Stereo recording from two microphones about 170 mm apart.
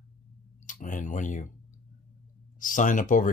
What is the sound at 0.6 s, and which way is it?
Speech, 50° left (ahead or behind).